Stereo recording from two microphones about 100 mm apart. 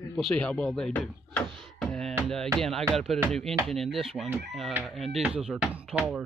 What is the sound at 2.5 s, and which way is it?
Speech, 5° left (ahead or behind).